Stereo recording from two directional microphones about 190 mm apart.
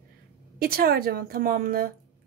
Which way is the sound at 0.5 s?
50° right (ahead or behind).